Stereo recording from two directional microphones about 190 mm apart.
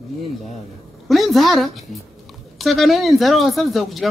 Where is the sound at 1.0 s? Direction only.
Centre (ahead or behind).